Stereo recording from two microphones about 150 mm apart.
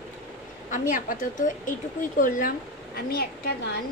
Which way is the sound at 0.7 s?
60° left (ahead or behind).